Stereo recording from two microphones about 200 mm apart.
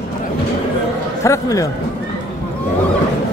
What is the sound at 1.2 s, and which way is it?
Speech, 15° left (ahead or behind).